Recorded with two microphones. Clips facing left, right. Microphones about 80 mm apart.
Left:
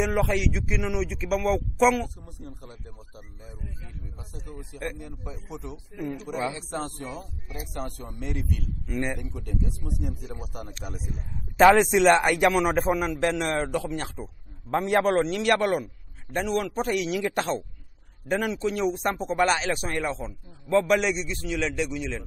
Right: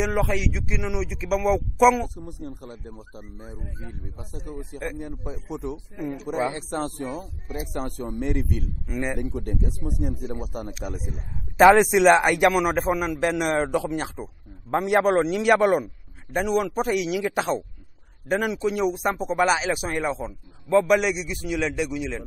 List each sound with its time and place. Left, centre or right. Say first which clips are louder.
0.0 s a man's voice: even; centre
2.0 s a man's voice: right 7 dB; right
2.7 s speech: right 6 dB; right
4.0 s a man's voice: right 4 dB; right
4.8 s a man's voice: right 1 dB; centre
5.2 s speech: right 6 dB; right
8.8 s a man's voice: even; centre
9.1 s a man's voice: right 5 dB; right
11.8 s a man's voice: right 2 dB; centre
20.8 s a man's voice: right 2 dB; centre